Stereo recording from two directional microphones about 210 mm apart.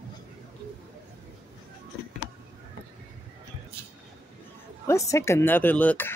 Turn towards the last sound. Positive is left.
turn(degrees=10)  # may be behind; listen again after turning